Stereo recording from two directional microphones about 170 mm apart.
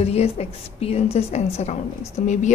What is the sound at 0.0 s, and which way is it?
A woman's voice, 40° left (ahead or behind).